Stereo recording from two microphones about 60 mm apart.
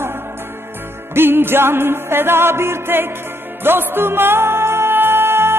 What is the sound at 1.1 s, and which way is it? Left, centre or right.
Music, right.